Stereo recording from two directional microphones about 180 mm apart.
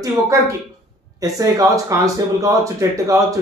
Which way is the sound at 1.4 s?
20° right (ahead or behind).